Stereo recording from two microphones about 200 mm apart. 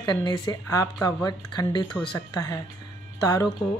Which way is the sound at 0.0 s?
20° left (ahead or behind).